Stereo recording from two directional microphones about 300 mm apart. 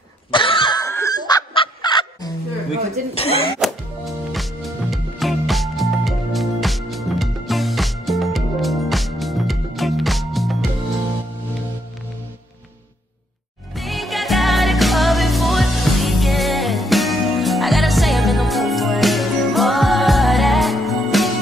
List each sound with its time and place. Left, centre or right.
0.3 s fowl: centre
3.2 s speech: centre
3.5 s music: centre
13.7 s music: centre